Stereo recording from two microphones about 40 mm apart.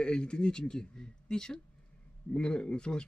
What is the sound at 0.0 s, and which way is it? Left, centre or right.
Speech, left.